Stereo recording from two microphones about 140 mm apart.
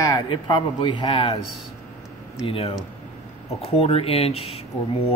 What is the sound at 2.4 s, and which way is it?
Speech, 40° left (ahead or behind).